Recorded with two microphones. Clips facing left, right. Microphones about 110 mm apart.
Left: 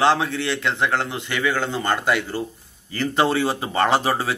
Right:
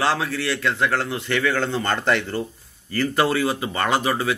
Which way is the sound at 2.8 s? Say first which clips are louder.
Even; 20° left (ahead or behind).